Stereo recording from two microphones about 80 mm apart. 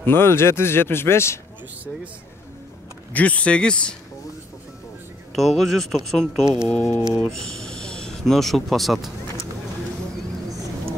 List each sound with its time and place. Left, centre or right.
0.0 s speech: left
3.1 s speech: centre
5.3 s speech: centre